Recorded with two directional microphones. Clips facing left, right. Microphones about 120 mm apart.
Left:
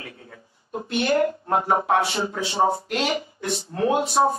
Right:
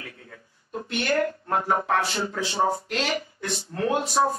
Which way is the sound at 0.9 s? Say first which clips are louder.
Left 4 dB; 20° left (ahead or behind).